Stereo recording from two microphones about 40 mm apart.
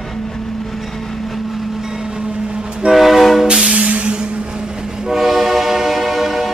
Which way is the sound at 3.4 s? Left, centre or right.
Right.